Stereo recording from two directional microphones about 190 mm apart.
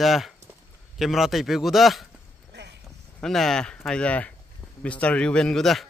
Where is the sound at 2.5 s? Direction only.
65° right (ahead or behind).